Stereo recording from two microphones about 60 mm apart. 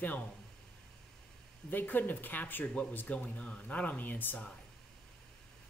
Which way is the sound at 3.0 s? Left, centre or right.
Left.